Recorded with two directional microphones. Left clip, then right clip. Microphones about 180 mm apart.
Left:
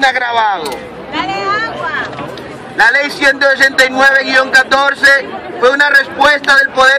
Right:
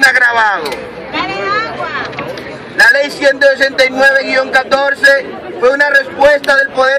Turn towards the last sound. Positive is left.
turn(degrees=10)  # may be behind; listen again after turning